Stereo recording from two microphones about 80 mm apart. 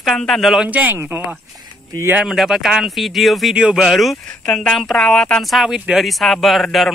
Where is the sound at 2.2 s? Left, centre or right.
Centre.